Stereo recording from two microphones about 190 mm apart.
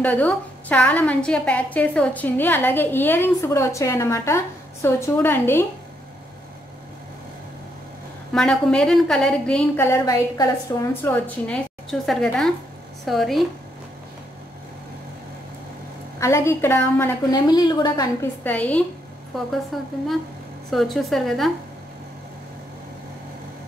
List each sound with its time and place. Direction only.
0.0 s a woman's voice: 10° left (ahead or behind)
8.3 s a woman's voice: 5° left (ahead or behind)
16.2 s a woman's voice: 15° left (ahead or behind)
18.2 s a woman's voice: 10° left (ahead or behind)